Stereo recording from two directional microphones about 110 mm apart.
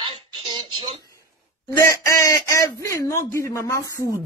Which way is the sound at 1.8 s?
25° left (ahead or behind).